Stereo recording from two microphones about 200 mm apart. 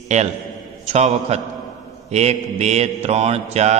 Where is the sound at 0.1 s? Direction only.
35° right (ahead or behind).